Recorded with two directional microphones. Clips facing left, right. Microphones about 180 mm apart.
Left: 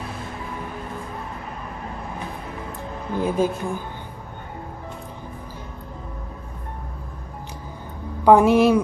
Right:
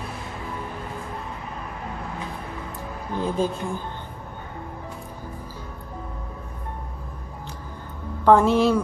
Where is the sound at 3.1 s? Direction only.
15° left (ahead or behind).